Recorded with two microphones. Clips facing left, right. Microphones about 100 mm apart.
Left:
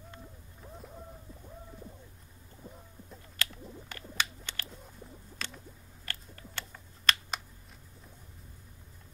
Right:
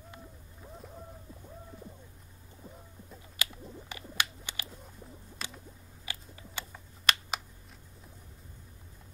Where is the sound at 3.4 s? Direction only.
10° right (ahead or behind).